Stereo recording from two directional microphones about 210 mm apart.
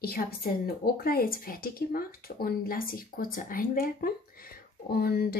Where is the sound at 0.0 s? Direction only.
45° left (ahead or behind).